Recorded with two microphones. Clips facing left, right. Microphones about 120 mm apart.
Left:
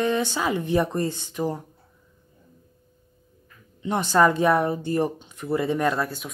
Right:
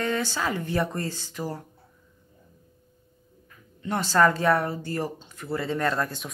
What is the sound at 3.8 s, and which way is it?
Speech, 20° left (ahead or behind).